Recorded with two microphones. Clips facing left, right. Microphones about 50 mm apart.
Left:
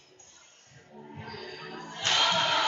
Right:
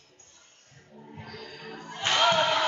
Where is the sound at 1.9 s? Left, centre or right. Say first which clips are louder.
Right 4 dB; centre.